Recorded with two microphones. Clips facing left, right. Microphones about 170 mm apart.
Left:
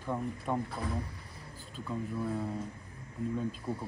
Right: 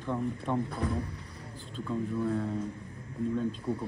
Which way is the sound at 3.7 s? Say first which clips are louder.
Right 4 dB; 5° left (ahead or behind).